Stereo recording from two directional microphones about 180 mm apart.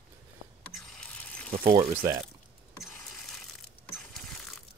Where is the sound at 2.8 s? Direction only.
Centre (ahead or behind).